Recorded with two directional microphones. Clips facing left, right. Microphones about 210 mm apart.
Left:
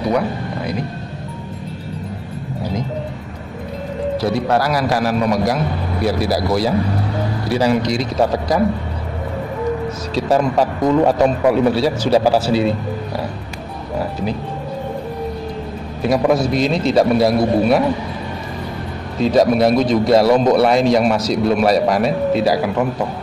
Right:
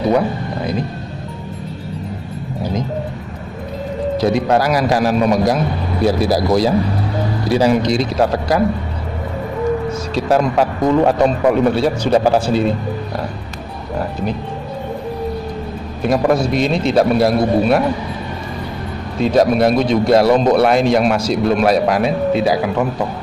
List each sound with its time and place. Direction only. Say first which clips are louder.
4.2 s a man's voice: right 3 dB; 20° right (ahead or behind)
8.2 s speech: right 1 dB; centre (ahead or behind)
10.1 s speech: even; centre (ahead or behind)
16.0 s speech: even; centre (ahead or behind)
19.1 s speech: even; centre (ahead or behind)